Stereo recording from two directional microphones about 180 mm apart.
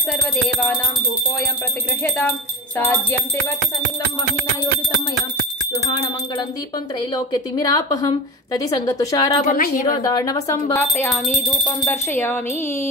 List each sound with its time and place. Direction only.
2.8 s speech: 10° left (ahead or behind)
7.5 s speech: 20° left (ahead or behind)
9.5 s a woman's voice: 50° left (ahead or behind)
10.0 s speech: 20° left (ahead or behind)